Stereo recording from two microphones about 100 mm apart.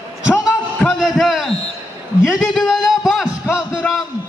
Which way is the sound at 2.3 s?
5° left (ahead or behind).